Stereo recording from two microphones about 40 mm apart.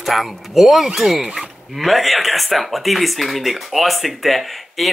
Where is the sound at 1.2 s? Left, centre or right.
Centre.